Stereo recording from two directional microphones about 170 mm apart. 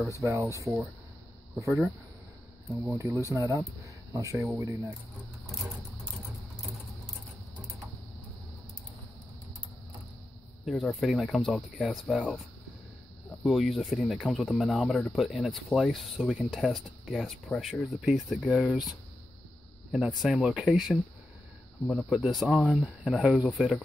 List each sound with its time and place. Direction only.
0.2 s speech: 15° right (ahead or behind)
1.6 s speech: 15° right (ahead or behind)
2.9 s speech: 15° right (ahead or behind)
10.6 s speech: centre (ahead or behind)
13.4 s speech: centre (ahead or behind)